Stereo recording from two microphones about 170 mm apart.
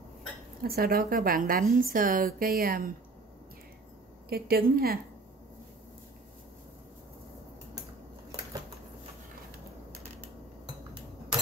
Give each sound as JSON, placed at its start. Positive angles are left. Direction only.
{"t": 0.6, "sound": "a woman's voice", "side_deg": -60}
{"t": 4.3, "sound": "a woman's voice", "side_deg": -60}